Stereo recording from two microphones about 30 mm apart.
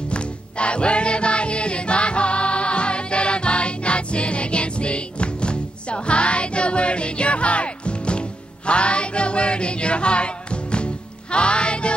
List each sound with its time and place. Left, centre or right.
0.1 s music: left